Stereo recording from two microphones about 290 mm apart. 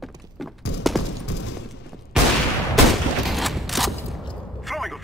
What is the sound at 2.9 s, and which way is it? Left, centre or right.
Fusillade, centre.